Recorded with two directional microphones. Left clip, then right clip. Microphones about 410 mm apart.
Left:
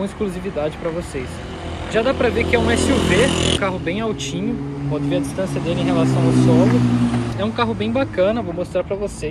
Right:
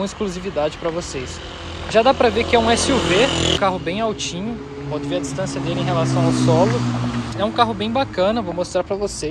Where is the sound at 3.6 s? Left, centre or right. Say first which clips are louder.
Right 2 dB; centre.